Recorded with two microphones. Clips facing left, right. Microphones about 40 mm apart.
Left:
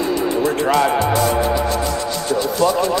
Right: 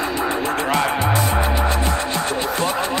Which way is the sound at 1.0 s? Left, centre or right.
Right.